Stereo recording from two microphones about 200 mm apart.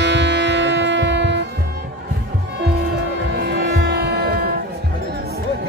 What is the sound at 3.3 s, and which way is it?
Music, 55° right (ahead or behind).